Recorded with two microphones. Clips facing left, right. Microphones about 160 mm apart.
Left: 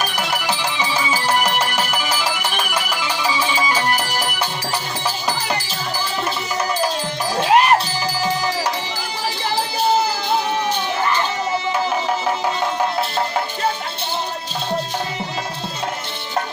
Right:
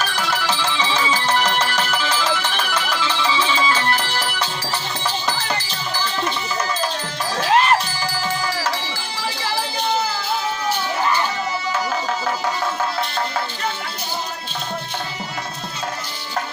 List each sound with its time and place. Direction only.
0.0 s music: 15° left (ahead or behind)
7.3 s music: 15° left (ahead or behind)